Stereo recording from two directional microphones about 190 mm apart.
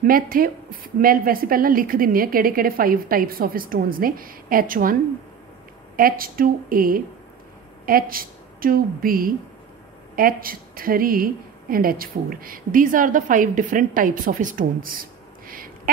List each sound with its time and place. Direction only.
0.0 s a woman's voice: 50° right (ahead or behind)
5.9 s a woman's voice: 50° right (ahead or behind)